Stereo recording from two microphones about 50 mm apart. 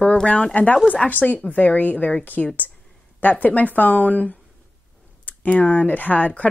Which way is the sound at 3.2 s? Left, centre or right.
Left.